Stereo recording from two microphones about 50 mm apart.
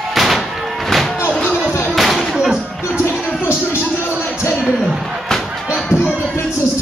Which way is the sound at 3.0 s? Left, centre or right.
Left.